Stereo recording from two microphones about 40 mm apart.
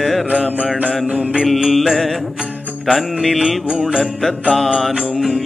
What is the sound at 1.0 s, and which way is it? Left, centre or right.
Mantra, right.